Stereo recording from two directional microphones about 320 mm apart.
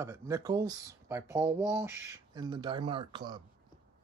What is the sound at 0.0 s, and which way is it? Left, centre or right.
Speech, centre.